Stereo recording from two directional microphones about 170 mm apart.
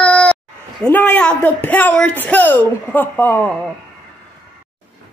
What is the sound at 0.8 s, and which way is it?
Speech, 10° left (ahead or behind).